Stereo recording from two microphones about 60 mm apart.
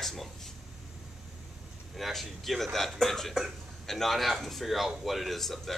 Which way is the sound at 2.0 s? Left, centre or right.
Centre.